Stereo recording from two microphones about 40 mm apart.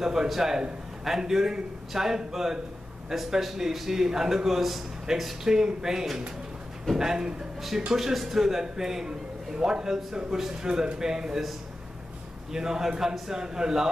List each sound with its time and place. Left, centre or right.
0.0 s a man's voice: centre
12.5 s a man's voice: centre